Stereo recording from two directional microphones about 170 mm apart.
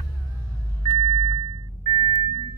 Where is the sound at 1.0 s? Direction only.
25° right (ahead or behind).